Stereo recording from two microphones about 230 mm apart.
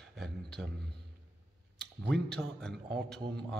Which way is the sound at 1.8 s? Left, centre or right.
Centre.